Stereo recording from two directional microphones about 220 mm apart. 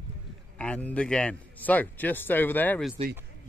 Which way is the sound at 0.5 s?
5° left (ahead or behind).